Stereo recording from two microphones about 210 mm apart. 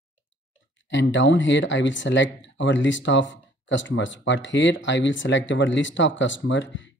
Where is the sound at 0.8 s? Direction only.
60° left (ahead or behind).